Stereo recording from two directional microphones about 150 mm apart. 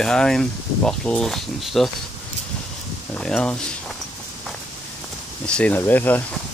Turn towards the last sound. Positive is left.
turn(degrees=10)  # may be behind; listen again after turning